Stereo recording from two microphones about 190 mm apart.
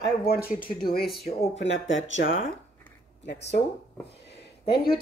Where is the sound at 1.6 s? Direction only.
80° left.